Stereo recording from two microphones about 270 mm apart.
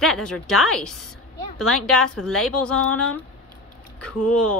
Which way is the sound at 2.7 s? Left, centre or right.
Left.